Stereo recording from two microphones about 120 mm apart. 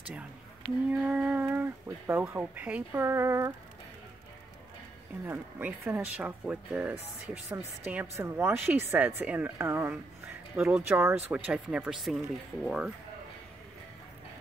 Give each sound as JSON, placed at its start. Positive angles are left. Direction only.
{"t": 0.8, "sound": "speech", "side_deg": -15}
{"t": 3.0, "sound": "speech", "side_deg": -25}
{"t": 5.2, "sound": "speech", "side_deg": -20}